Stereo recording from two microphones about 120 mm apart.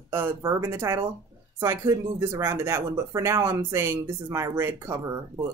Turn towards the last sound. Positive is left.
turn(degrees=-25)  # may be behind; listen again after turning